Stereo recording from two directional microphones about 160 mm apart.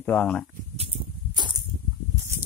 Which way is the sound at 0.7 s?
30° right (ahead or behind).